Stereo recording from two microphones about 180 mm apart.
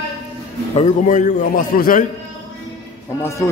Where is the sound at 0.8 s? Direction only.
45° left (ahead or behind).